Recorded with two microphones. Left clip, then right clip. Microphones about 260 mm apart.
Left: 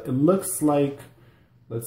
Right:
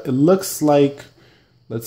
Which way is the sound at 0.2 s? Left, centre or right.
Right.